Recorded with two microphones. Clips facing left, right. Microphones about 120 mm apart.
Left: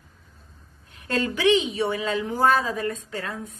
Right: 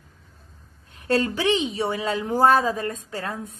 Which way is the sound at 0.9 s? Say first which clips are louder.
Right 4 dB; 30° right (ahead or behind).